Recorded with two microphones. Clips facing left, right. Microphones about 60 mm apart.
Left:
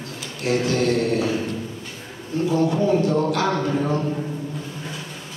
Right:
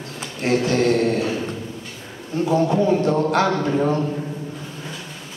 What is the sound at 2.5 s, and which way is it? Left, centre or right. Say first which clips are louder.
A man's voice: right 2 dB; right.